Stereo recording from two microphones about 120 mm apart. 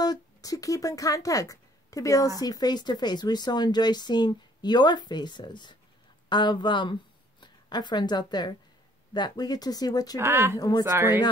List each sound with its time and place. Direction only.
0.0 s speech: 30° left (ahead or behind)
10.1 s speech: 20° right (ahead or behind)
10.6 s speech: 30° left (ahead or behind)
10.9 s speech: 20° right (ahead or behind)